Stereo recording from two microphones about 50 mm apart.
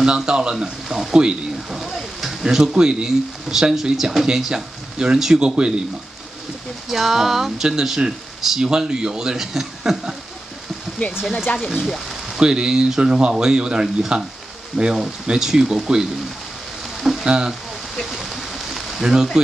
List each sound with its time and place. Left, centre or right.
0.0 s speech: centre
6.9 s speech: centre
12.4 s speech: centre
18.0 s a sound: centre
19.4 s speech: centre